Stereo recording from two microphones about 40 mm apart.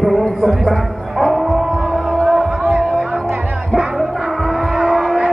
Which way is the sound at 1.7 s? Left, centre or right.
Centre.